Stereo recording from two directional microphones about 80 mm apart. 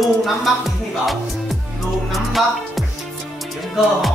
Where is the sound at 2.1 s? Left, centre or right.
Centre.